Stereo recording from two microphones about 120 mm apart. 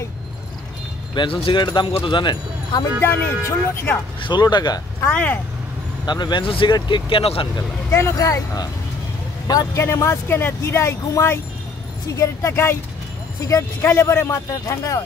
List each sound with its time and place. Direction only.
1.1 s speech: 45° left (ahead or behind)
3.0 s speech: 15° left (ahead or behind)
4.2 s speech: 40° left (ahead or behind)
5.1 s speech: 15° left (ahead or behind)
6.0 s speech: 35° left (ahead or behind)
7.9 s speech: 25° left (ahead or behind)